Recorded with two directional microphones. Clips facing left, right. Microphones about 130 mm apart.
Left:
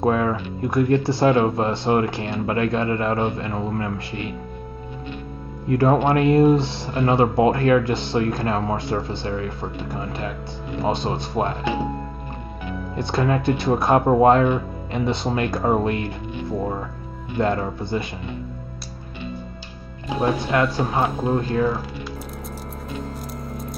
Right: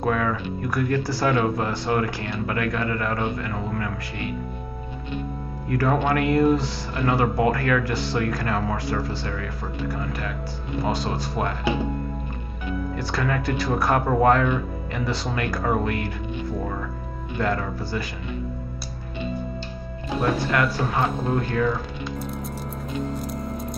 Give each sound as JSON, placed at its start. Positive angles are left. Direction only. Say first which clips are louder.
{"t": 0.0, "sound": "speech", "louder": "left 3 dB", "side_deg": 25}
{"t": 5.7, "sound": "speech", "louder": "left 4 dB", "side_deg": 25}
{"t": 12.9, "sound": "speech", "louder": "left 7 dB", "side_deg": 25}
{"t": 17.4, "sound": "speech", "louder": "left 4 dB", "side_deg": 25}
{"t": 20.4, "sound": "speech", "louder": "left 2 dB", "side_deg": 20}
{"t": 23.2, "sound": "squish", "louder": "right 2 dB", "side_deg": 0}